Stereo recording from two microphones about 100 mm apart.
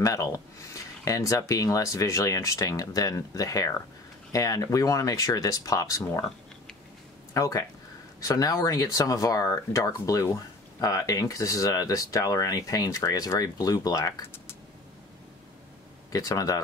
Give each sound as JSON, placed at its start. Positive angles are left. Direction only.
{"t": 0.0, "sound": "speech", "side_deg": 35}
{"t": 7.3, "sound": "speech", "side_deg": 35}
{"t": 14.2, "sound": "typing", "side_deg": 25}
{"t": 16.1, "sound": "speech", "side_deg": 35}